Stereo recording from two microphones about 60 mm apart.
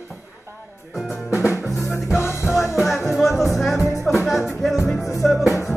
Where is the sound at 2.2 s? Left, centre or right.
Left.